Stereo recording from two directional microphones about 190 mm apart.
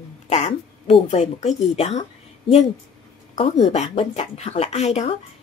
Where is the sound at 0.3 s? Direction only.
35° left (ahead or behind).